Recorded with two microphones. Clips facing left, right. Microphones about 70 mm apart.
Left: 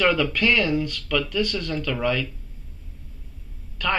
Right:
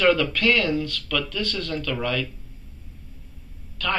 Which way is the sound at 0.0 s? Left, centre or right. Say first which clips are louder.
Right 1 dB; centre.